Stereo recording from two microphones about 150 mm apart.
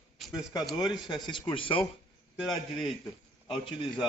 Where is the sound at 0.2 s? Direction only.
5° right (ahead or behind).